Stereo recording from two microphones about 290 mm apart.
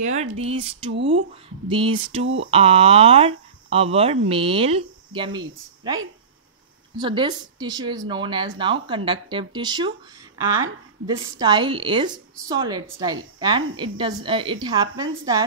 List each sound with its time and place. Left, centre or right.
0.0 s speech: right
0.9 s speech: right
1.7 s a woman's voice: centre
2.2 s speech: right
2.5 s speech: centre
7.0 s a woman's voice: centre